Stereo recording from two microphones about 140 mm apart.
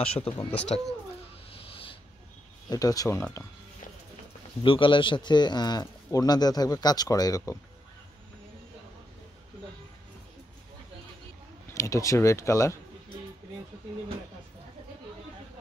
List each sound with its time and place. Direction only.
0.0 s speech: 45° left (ahead or behind)
1.7 s a sound: 40° left (ahead or behind)
2.7 s a man's voice: 25° left (ahead or behind)
4.6 s a man's voice: 35° left (ahead or behind)
11.7 s a man's voice: 20° left (ahead or behind)